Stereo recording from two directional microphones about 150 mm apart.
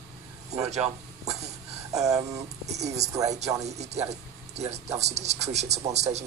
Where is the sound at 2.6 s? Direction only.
50° right (ahead or behind).